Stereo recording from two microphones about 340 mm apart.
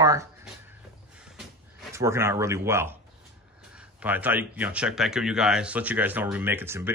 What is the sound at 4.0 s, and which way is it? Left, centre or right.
Speech, centre.